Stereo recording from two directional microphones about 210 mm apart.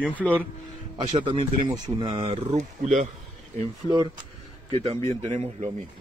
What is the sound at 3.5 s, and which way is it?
A man's voice, 20° right (ahead or behind).